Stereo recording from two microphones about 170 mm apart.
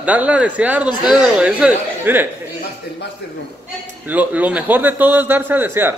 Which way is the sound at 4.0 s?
10° right (ahead or behind).